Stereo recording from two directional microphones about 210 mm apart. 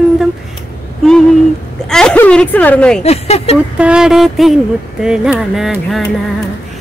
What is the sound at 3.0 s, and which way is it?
Speech, 30° left (ahead or behind).